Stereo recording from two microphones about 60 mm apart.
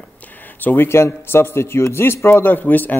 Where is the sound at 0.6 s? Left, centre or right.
Left.